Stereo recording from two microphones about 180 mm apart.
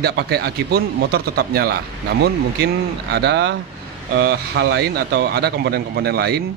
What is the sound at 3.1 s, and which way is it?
Speech, 70° right (ahead or behind).